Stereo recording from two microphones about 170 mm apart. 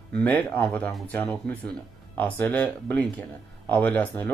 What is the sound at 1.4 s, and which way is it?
Speech, 70° right (ahead or behind).